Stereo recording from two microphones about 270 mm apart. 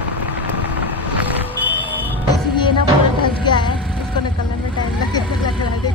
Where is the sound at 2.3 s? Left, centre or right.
Centre.